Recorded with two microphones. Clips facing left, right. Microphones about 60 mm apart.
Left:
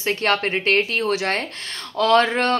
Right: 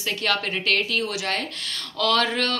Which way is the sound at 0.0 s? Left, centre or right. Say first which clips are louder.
Left 5 dB; left.